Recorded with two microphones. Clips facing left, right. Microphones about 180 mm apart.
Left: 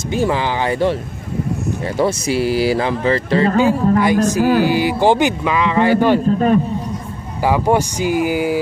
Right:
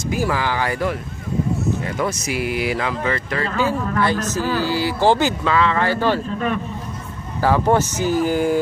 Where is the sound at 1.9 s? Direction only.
30° left (ahead or behind).